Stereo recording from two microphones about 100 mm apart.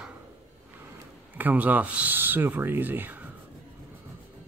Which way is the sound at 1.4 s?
15° right (ahead or behind).